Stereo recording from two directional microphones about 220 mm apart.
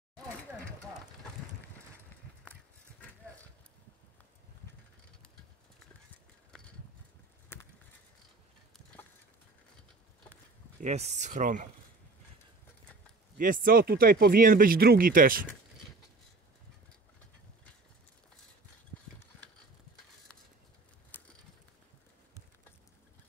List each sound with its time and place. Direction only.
10.8 s speech: 30° right (ahead or behind)
13.4 s speech: 40° right (ahead or behind)
21.1 s mechanisms: 5° left (ahead or behind)